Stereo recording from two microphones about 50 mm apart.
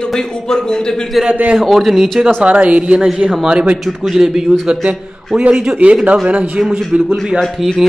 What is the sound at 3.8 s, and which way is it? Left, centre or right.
Speech, centre.